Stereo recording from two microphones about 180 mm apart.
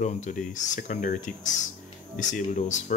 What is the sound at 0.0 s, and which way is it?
Speech, 45° left (ahead or behind).